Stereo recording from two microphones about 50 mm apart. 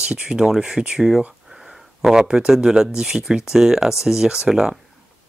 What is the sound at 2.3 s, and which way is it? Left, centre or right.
Speech, centre.